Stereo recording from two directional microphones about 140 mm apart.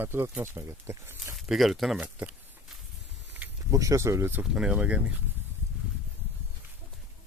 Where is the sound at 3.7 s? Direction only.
25° right (ahead or behind).